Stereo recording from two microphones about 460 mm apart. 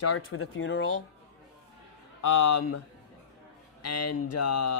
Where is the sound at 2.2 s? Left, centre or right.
Left.